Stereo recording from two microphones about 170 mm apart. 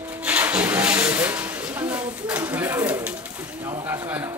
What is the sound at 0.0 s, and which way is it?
Vehicle, 10° right (ahead or behind).